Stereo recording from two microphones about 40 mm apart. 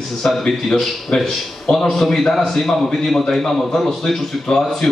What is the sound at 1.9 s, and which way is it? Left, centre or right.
A man's voice, centre.